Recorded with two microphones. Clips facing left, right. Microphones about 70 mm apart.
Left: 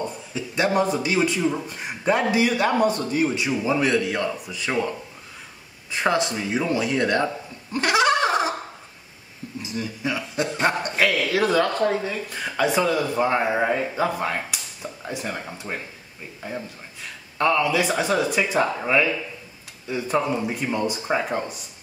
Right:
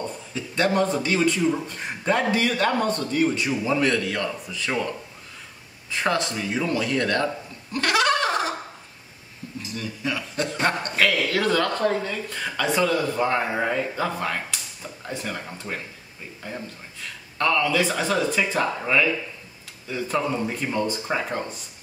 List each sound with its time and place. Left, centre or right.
0.3 s a man's voice: centre
5.9 s speech: centre
7.7 s a sound: centre
9.6 s a man's voice: centre